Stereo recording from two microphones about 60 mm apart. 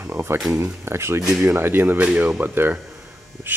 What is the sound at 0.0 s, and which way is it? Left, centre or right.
Speech, right.